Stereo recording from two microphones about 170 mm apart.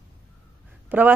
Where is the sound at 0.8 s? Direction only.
10° right (ahead or behind).